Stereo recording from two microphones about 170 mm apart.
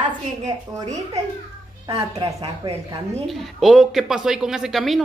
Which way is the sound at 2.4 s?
35° right (ahead or behind).